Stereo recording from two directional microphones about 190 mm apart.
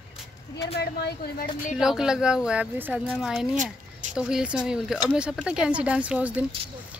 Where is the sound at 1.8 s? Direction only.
5° right (ahead or behind).